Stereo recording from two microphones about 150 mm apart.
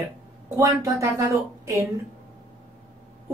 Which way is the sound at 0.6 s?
20° right (ahead or behind).